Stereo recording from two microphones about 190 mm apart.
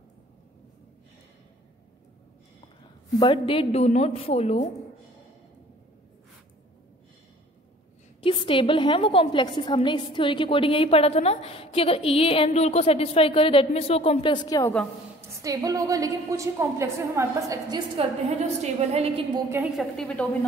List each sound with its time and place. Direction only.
3.2 s a woman's voice: 30° left (ahead or behind)
8.2 s a woman's voice: 25° left (ahead or behind)
15.4 s a woman's voice: 20° right (ahead or behind)
18.6 s a woman's voice: 35° right (ahead or behind)
19.3 s a woman's voice: 10° right (ahead or behind)
19.8 s a woman's voice: 5° left (ahead or behind)